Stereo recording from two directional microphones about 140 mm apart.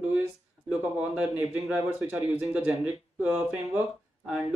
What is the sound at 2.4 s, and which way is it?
Speech, 5° right (ahead or behind).